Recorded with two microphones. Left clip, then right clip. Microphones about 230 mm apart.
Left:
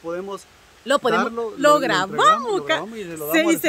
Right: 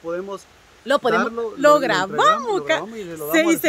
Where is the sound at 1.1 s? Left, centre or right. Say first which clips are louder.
Right 1 dB; left.